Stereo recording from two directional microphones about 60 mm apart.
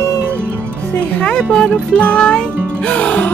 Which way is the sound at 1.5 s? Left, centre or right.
Centre.